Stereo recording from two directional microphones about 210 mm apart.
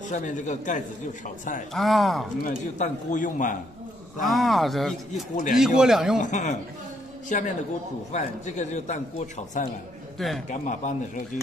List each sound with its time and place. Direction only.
0.1 s speech: 35° left (ahead or behind)
1.7 s speech: centre (ahead or behind)
2.4 s speech: 35° left (ahead or behind)
4.2 s speech: centre (ahead or behind)
5.3 s speech: 35° left (ahead or behind)
5.8 s speech: centre (ahead or behind)
6.2 s speech: 35° left (ahead or behind)
10.1 s a man's voice: centre (ahead or behind)
10.5 s speech: 35° left (ahead or behind)